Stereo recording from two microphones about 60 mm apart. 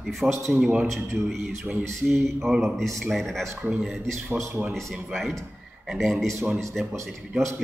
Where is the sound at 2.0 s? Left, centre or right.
Centre.